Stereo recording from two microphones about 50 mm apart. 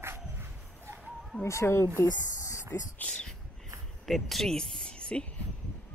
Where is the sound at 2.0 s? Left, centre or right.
Left.